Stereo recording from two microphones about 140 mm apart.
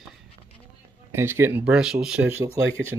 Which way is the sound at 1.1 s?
20° right (ahead or behind).